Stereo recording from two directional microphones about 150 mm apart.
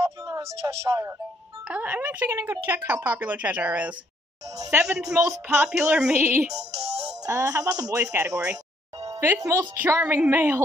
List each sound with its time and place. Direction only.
0.0 s a sound: 20° right (ahead or behind)
0.6 s speech: 20° right (ahead or behind)
1.7 s speech: 10° right (ahead or behind)
7.2 s speech: 20° right (ahead or behind)
9.0 s music: 25° right (ahead or behind)
9.3 s speech: 15° right (ahead or behind)